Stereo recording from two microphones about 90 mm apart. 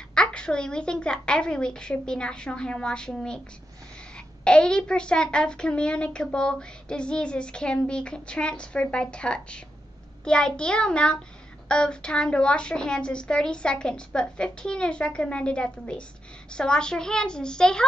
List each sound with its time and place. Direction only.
0.1 s a child's voice: 10° left (ahead or behind)
4.5 s a child's voice: 10° left (ahead or behind)